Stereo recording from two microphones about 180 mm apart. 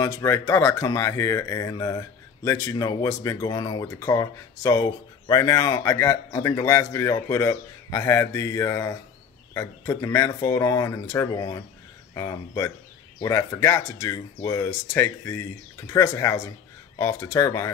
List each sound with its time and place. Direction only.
0.0 s speech: 15° left (ahead or behind)